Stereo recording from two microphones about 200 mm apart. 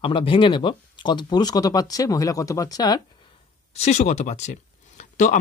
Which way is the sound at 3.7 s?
35° left (ahead or behind).